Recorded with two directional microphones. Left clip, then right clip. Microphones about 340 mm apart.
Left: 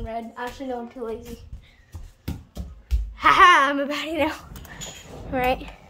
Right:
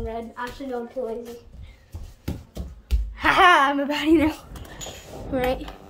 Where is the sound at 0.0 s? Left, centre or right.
Centre.